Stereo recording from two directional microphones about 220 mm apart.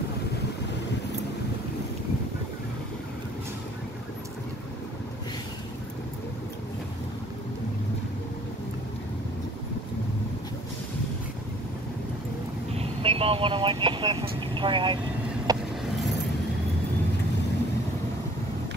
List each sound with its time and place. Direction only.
12.7 s vehicle: 25° right (ahead or behind)